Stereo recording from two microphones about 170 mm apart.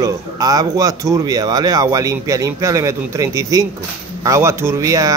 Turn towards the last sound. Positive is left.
turn(degrees=-20)  # may be behind; listen again after turning